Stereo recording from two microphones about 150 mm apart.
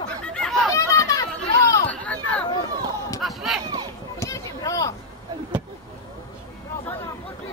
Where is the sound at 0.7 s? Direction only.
20° left (ahead or behind).